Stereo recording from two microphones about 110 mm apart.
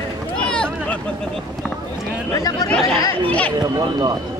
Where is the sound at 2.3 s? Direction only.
35° left (ahead or behind).